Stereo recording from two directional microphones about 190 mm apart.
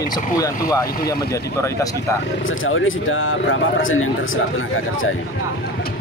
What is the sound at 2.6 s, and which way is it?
Speech, 90° left.